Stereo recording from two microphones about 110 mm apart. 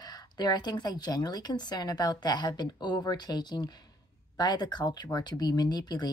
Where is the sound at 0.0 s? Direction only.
40° left (ahead or behind).